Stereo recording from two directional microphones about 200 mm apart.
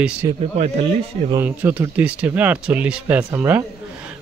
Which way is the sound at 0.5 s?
35° right (ahead or behind).